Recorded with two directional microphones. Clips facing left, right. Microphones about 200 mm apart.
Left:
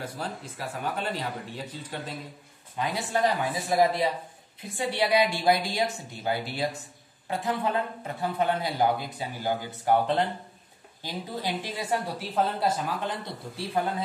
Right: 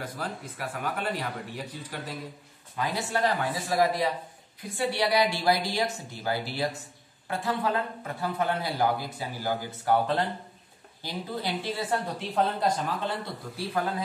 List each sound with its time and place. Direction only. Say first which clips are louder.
0.0 s a man's voice: even; 25° left (ahead or behind)